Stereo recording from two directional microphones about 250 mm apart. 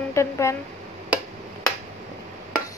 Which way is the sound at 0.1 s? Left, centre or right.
Centre.